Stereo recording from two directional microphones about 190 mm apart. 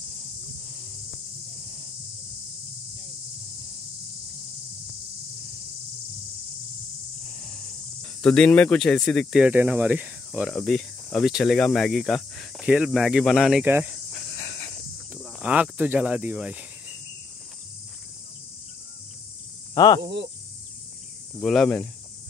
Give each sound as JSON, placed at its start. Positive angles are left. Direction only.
{"t": 8.0, "sound": "speech", "side_deg": 5}
{"t": 14.3, "sound": "a sound", "side_deg": 15}
{"t": 15.4, "sound": "speech", "side_deg": -5}
{"t": 19.7, "sound": "speech", "side_deg": 20}
{"t": 20.0, "sound": "speech", "side_deg": -65}
{"t": 21.4, "sound": "speech", "side_deg": 0}